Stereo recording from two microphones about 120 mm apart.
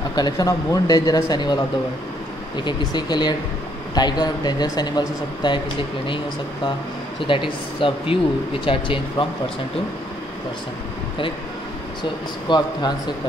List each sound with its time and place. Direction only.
0.1 s speech: 35° left (ahead or behind)
12.0 s speech: 40° left (ahead or behind)